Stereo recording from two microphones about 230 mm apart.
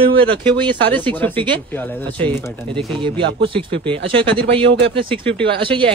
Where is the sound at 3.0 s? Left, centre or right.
Right.